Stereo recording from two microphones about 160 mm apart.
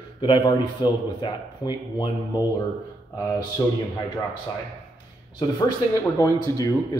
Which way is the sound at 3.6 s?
20° left (ahead or behind).